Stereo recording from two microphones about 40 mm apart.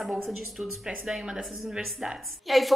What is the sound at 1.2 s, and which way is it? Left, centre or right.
Speech, right.